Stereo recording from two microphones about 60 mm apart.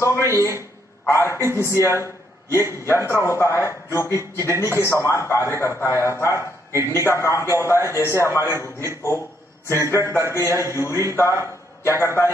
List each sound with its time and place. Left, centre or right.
0.0 s a man's voice: left
9.7 s a man's voice: left